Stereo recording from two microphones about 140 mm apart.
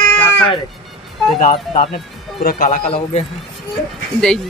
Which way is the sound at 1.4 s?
60° left (ahead or behind).